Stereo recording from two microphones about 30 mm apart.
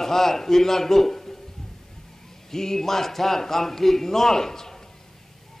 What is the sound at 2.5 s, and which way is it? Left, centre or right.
A man's voice, centre.